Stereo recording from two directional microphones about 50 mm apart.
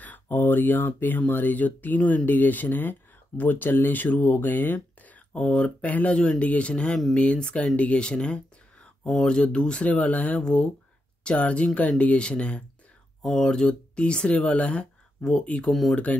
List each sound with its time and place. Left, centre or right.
0.0 s speech: left
5.3 s speech: left
10.4 s speech: centre
15.7 s speech: centre